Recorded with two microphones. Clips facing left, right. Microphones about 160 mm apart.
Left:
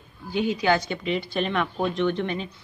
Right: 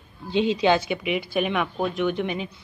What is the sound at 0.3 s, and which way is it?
Speech, 25° right (ahead or behind).